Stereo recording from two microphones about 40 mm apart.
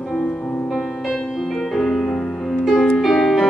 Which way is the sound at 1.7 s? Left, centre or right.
Centre.